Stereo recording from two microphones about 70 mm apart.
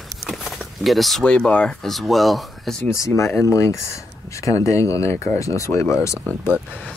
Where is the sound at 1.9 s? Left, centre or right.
Centre.